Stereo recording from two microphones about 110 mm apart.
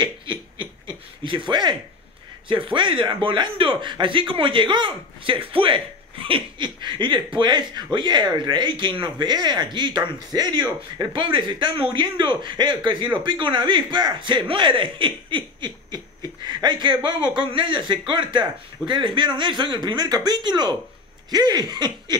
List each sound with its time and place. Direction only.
0.0 s a sound: 45° right (ahead or behind)
2.4 s speech: 50° right (ahead or behind)
21.3 s laughter: 35° right (ahead or behind)